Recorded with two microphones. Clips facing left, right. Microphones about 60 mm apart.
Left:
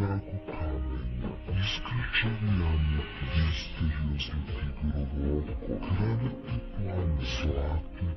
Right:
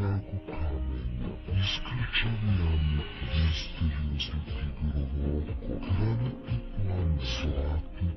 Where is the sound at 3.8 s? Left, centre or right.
Left.